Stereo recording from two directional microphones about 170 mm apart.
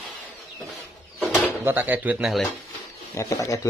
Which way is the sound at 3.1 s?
20° left (ahead or behind).